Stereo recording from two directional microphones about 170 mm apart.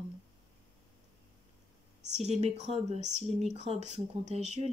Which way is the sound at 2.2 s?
40° right (ahead or behind).